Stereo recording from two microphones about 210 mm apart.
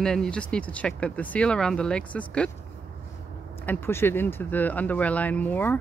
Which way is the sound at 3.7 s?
10° left (ahead or behind).